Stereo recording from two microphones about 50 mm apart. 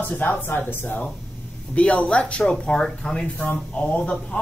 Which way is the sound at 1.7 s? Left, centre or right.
Left.